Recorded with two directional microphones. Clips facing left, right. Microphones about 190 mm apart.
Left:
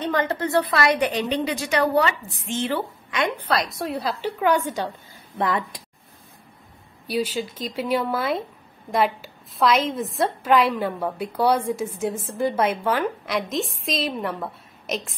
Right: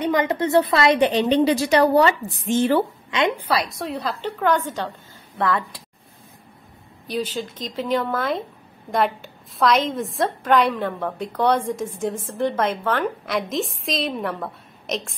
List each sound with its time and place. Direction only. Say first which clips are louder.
0.0 s a woman's voice: right 3 dB; 15° right (ahead or behind); by 2.8 s 40° right (ahead or behind)
3.3 s a woman's voice: right 1 dB; 5° right (ahead or behind); by 5.8 s 15° left (ahead or behind)
7.1 s a woman's voice: left 1 dB; 10° left (ahead or behind)